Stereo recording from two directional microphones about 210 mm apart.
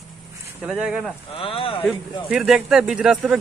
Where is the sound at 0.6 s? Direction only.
5° right (ahead or behind).